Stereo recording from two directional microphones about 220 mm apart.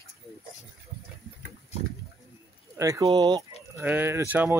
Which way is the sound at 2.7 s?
15° right (ahead or behind).